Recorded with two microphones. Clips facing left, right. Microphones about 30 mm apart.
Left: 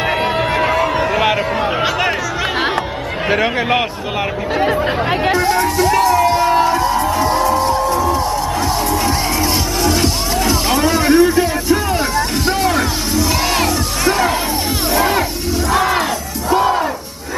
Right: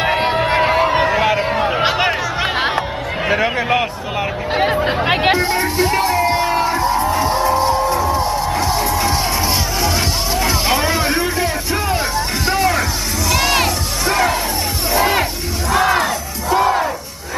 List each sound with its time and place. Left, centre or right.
0.5 s a sound: centre
3.3 s a man's voice: centre
5.0 s music: right
6.6 s music: centre
7.5 s music: right
8.6 s music: centre
10.4 s music: centre
13.3 s music: centre
15.0 s music: centre
15.7 s a sound: centre